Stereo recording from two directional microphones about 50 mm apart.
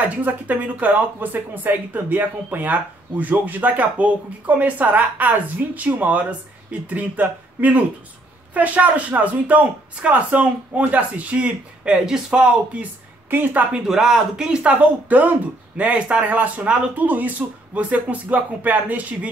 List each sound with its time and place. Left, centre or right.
0.1 s speech: right; by 12.8 s centre
13.3 s speech: right
13.8 s speech: centre
14.6 s speech: right